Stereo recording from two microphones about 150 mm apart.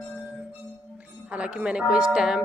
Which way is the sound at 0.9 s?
10° right (ahead or behind).